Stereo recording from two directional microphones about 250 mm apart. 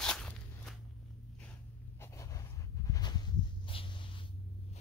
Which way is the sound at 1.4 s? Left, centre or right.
Centre.